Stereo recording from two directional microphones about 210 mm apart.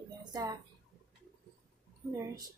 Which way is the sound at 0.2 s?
20° right (ahead or behind).